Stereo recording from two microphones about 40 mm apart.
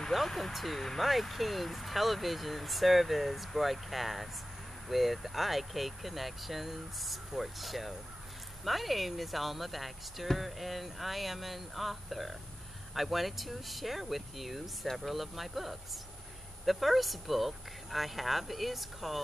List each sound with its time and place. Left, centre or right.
0.1 s speech: centre